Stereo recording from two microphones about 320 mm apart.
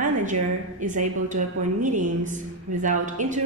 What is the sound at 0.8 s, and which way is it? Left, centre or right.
A woman's voice, right.